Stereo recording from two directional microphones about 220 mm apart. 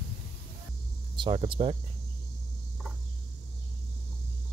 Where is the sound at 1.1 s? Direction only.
20° right (ahead or behind).